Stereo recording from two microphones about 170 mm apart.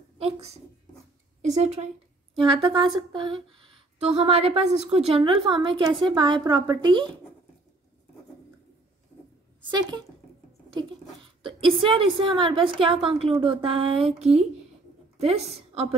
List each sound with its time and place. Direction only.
0.2 s a woman's voice: 40° right (ahead or behind)
1.6 s a woman's voice: 40° right (ahead or behind)
2.3 s a woman's voice: 30° right (ahead or behind)
9.7 s a woman's voice: 25° right (ahead or behind)
11.4 s a woman's voice: 30° right (ahead or behind)
15.1 s a woman's voice: 40° right (ahead or behind)